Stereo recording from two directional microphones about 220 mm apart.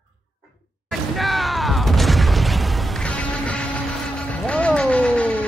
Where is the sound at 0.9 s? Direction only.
Centre (ahead or behind).